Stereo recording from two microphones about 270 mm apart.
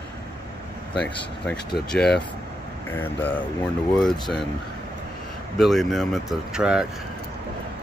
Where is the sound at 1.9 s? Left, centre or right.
Left.